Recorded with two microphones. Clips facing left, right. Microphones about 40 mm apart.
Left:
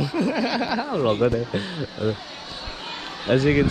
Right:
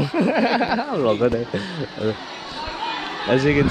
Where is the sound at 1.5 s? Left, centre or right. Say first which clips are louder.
Right 1 dB; left.